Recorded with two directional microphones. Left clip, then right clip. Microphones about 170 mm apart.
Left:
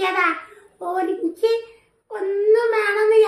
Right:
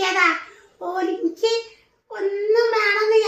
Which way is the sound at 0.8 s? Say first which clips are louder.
Left 1 dB; 25° left (ahead or behind).